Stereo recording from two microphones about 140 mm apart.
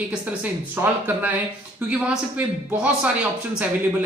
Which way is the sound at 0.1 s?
10° right (ahead or behind).